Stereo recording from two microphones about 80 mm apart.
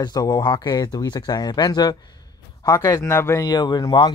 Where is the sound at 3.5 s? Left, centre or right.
Left.